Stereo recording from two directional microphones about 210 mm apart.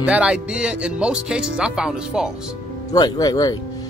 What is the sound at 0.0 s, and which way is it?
Speech, 5° right (ahead or behind).